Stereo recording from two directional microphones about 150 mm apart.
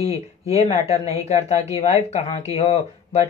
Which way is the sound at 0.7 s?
45° left (ahead or behind).